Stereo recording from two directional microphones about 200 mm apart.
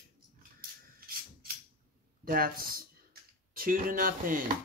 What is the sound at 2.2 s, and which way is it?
Speech, 45° right (ahead or behind).